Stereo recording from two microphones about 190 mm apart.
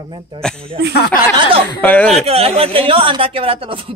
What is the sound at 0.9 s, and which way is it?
Speech, 55° left (ahead or behind).